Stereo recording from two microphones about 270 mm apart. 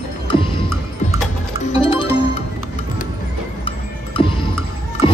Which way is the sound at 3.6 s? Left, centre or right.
Centre.